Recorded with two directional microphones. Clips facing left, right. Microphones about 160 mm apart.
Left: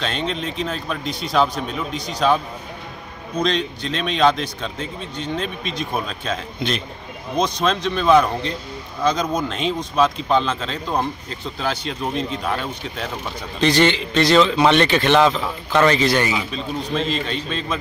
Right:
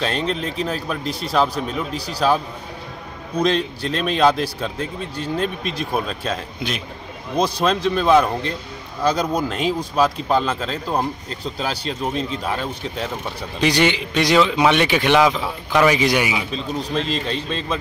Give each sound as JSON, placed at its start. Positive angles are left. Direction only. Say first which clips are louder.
{"t": 0.0, "sound": "speech", "louder": "right 2 dB", "side_deg": 0}
{"t": 3.3, "sound": "speech", "louder": "right 2 dB", "side_deg": -5}
{"t": 5.1, "sound": "a man's voice", "louder": "right 2 dB", "side_deg": -35}
{"t": 5.6, "sound": "speech", "louder": "right 2 dB", "side_deg": -5}
{"t": 12.0, "sound": "speech", "louder": "right 1 dB", "side_deg": -5}
{"t": 13.6, "sound": "a man's voice", "louder": "left 1 dB", "side_deg": -10}
{"t": 17.1, "sound": "a man's voice", "louder": "even", "side_deg": -35}